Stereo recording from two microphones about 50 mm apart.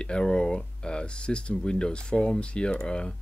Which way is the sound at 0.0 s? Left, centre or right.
Centre.